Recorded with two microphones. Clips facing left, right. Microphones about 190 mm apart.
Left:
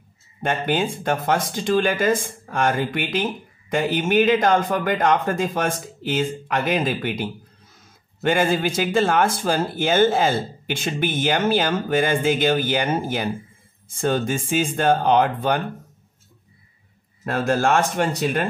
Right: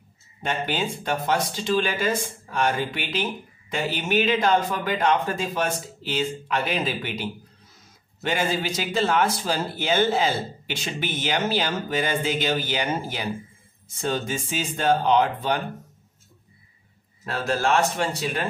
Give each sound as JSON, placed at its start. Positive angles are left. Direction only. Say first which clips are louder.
{"t": 0.4, "sound": "a man's voice", "louder": "left 5 dB", "side_deg": 55}
{"t": 17.2, "sound": "a man's voice", "louder": "left 5 dB", "side_deg": 50}